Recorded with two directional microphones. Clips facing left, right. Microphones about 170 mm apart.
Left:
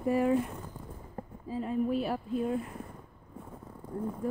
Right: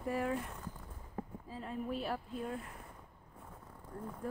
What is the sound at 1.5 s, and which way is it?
Speech, 10° left (ahead or behind).